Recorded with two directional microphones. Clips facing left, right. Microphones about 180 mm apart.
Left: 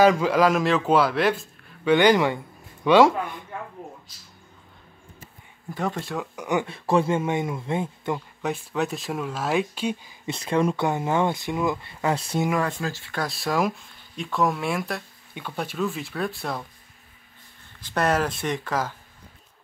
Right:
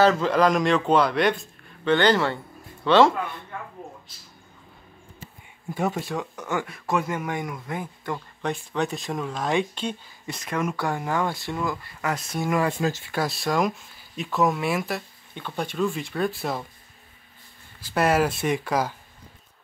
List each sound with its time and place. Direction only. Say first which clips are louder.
0.0 s speech: left 1 dB; 10° left (ahead or behind)
2.0 s a man's voice: left 3 dB; 15° left (ahead or behind)
5.8 s speech: right 1 dB; 10° right (ahead or behind)
6.3 s speech: left 3 dB; 15° left (ahead or behind)
8.4 s speech: right 3 dB; 5° left (ahead or behind)
10.2 s speech: left 5 dB; 30° left (ahead or behind)
12.6 s speech: right 4 dB; 20° right (ahead or behind)
13.1 s speech: right 1 dB; centre (ahead or behind)
17.7 s speech: right 2 dB; 10° right (ahead or behind)